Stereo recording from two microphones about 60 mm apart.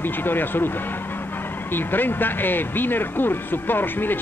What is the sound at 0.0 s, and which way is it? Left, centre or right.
Speech, left.